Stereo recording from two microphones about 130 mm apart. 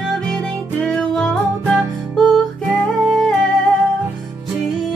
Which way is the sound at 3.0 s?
5° left (ahead or behind).